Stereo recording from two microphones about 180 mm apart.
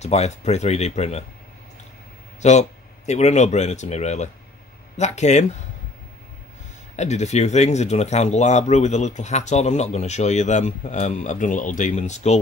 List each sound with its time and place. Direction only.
0.0 s speech: 35° left (ahead or behind)
2.4 s speech: 40° left (ahead or behind)
7.0 s speech: 40° left (ahead or behind)